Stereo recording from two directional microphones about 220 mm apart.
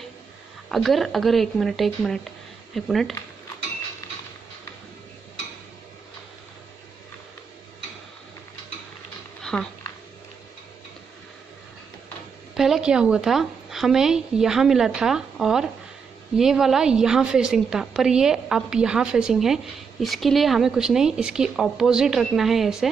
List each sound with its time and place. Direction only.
0.7 s a woman's voice: centre (ahead or behind)
9.4 s a sound: centre (ahead or behind)
12.5 s a woman's voice: centre (ahead or behind)